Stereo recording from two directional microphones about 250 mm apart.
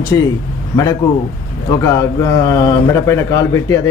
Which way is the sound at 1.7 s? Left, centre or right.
Centre.